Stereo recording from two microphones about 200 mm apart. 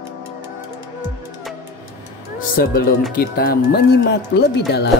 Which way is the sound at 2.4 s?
45° left (ahead or behind).